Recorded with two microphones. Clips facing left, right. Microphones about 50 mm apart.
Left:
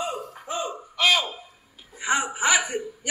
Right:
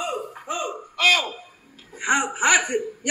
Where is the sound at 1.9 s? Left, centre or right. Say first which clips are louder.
Right 3 dB; right.